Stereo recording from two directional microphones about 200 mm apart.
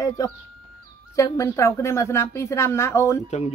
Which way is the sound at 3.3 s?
35° left (ahead or behind).